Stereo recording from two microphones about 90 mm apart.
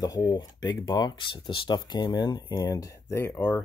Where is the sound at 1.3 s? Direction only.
70° left (ahead or behind).